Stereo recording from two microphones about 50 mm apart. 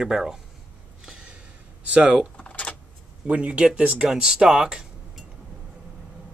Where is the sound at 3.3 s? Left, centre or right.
Right.